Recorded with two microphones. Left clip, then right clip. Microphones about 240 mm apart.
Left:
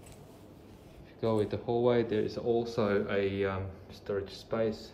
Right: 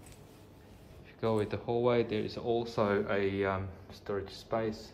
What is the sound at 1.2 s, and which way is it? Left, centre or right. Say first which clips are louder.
Speech: left 1 dB; centre.